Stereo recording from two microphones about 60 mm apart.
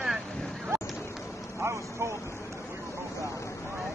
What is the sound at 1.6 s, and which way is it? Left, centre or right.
Vehicle, right.